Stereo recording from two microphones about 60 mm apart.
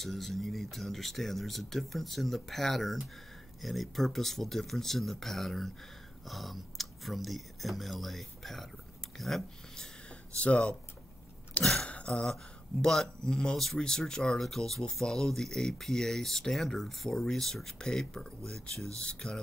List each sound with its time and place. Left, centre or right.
0.0 s speech: centre
10.3 s speech: left
11.6 s speech: centre
11.9 s a sound: centre
12.8 s speech: centre